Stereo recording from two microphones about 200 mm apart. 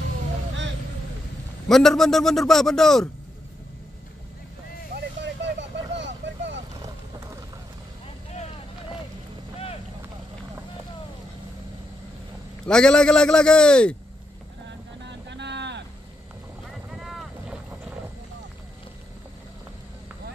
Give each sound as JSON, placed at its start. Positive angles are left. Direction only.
{"t": 1.7, "sound": "a man's voice", "side_deg": 0}
{"t": 4.9, "sound": "vehicle", "side_deg": -60}
{"t": 12.6, "sound": "a man's voice", "side_deg": 5}
{"t": 15.0, "sound": "boat", "side_deg": -60}
{"t": 16.7, "sound": "boat", "side_deg": 0}